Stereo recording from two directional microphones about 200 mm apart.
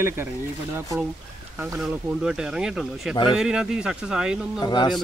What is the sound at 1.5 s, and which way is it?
Speech, 5° right (ahead or behind).